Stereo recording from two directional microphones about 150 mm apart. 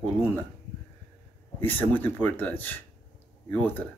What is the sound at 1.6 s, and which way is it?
Speech, 10° left (ahead or behind).